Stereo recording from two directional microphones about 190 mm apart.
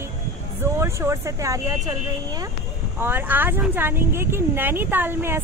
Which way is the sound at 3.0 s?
10° right (ahead or behind).